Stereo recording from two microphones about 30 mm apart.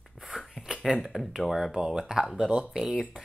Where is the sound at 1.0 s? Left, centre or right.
Centre.